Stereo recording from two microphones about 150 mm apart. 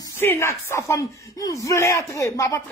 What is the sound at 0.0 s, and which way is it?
A man's voice, 15° left (ahead or behind).